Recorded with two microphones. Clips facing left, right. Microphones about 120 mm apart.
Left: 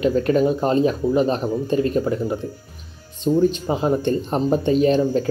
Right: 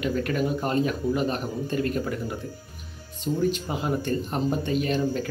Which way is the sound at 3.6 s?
30° left (ahead or behind).